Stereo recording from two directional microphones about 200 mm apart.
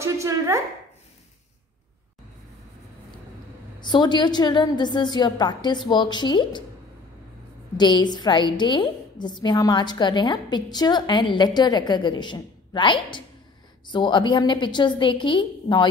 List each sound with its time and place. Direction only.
0.0 s a sound: 15° right (ahead or behind)
3.8 s a woman's voice: 20° left (ahead or behind)
7.7 s a woman's voice: 20° left (ahead or behind)